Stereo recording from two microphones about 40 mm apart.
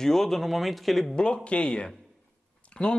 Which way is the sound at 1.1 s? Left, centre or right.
Left.